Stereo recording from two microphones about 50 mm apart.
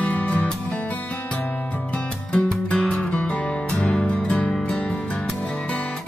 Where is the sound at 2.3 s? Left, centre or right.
Centre.